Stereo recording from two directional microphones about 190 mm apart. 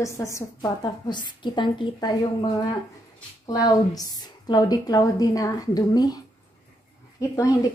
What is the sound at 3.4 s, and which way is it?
A woman's voice, 20° left (ahead or behind).